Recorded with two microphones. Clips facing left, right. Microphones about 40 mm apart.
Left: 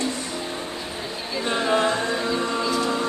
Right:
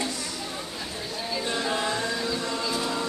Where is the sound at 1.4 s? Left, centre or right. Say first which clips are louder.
Left 8 dB; left.